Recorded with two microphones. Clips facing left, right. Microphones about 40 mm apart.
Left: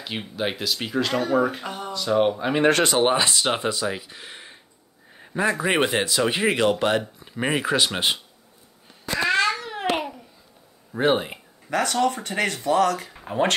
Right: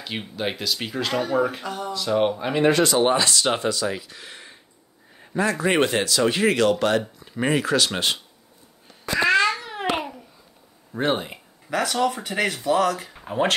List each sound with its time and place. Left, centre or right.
0.0 s speech: centre
1.6 s speech: left
1.9 s speech: centre
3.0 s speech: centre
9.3 s babbling: centre
10.9 s speech: centre
11.7 s speech: centre